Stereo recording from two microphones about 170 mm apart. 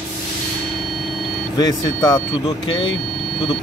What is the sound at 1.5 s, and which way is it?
Speech, 20° left (ahead or behind).